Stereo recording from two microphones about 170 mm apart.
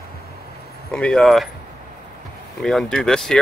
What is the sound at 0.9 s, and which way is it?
Speech, 5° left (ahead or behind).